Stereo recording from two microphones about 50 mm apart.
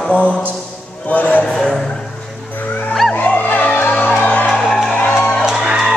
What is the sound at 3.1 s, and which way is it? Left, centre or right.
Music, left.